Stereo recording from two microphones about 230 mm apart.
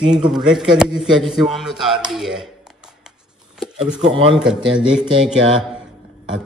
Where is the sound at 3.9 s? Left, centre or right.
Right.